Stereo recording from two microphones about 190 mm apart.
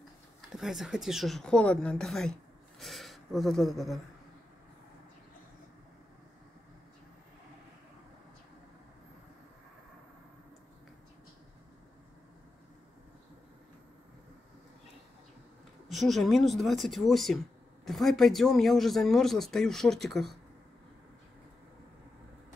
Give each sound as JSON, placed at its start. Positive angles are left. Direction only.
{"t": 0.6, "sound": "speech", "side_deg": 0}
{"t": 15.9, "sound": "speech", "side_deg": 0}